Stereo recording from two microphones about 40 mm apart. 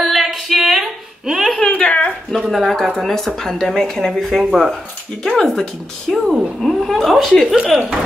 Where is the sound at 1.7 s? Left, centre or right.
Left.